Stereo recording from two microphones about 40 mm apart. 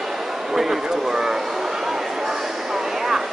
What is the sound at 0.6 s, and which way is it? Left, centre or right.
Speech, centre.